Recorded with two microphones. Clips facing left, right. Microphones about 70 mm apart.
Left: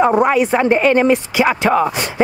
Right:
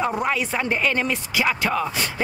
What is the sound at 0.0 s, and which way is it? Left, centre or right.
Speech, left.